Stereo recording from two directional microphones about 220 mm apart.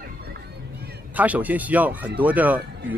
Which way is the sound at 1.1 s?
5° right (ahead or behind).